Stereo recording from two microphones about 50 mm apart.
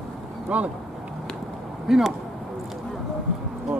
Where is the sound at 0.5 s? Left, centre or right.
Right.